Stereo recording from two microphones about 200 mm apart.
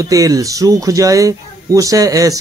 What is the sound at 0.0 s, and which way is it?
Speech, 15° right (ahead or behind).